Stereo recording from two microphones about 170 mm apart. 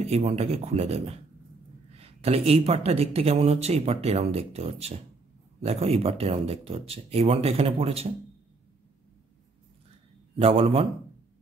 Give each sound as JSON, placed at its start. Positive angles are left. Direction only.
{"t": 0.0, "sound": "speech", "side_deg": -40}
{"t": 10.4, "sound": "speech", "side_deg": -35}